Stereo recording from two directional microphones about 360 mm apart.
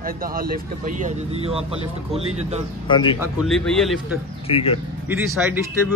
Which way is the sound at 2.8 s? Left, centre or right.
Centre.